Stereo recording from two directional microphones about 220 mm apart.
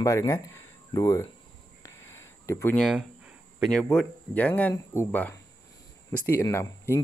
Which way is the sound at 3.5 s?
Centre (ahead or behind).